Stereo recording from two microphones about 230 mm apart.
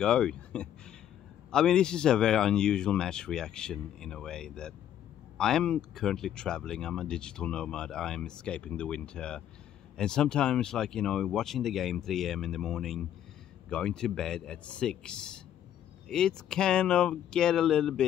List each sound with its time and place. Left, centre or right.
0.0 s speech: centre